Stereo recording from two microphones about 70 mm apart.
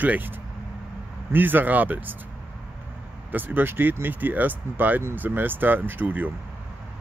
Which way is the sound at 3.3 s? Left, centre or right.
Right.